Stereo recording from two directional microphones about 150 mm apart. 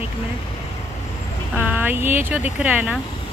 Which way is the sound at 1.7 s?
10° right (ahead or behind).